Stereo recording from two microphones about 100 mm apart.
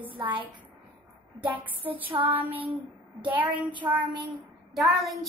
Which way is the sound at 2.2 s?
15° right (ahead or behind).